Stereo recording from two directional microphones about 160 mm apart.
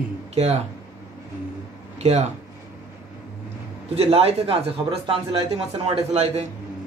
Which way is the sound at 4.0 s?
40° right (ahead or behind).